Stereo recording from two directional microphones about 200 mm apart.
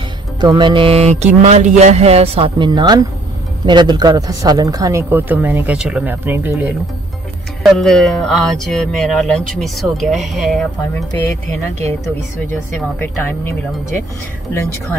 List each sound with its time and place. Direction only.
0.4 s music: 20° right (ahead or behind)
3.6 s a man's voice: 20° right (ahead or behind); by 11.1 s centre (ahead or behind)
11.1 s speech: 15° left (ahead or behind)
13.0 s speech: 10° left (ahead or behind)